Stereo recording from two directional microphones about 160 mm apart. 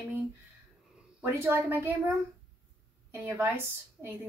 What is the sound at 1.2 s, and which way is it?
Speech, 15° right (ahead or behind).